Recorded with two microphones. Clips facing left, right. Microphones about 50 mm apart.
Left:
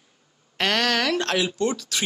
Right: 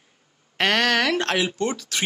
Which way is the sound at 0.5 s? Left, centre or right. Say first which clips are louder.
Right 2 dB; centre.